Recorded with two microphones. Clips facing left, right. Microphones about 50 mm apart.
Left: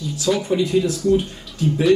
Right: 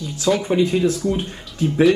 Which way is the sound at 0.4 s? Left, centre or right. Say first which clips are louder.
Right 1 dB; right.